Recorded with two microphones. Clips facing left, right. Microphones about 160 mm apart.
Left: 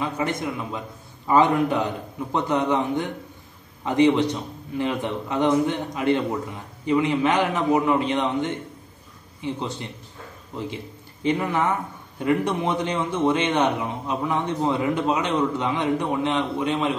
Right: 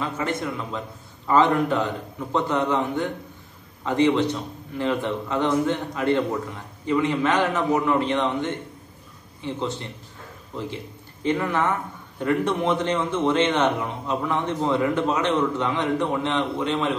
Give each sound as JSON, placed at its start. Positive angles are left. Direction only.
{"t": 0.0, "sound": "a man's voice", "side_deg": 15}
{"t": 11.2, "sound": "a man's voice", "side_deg": 15}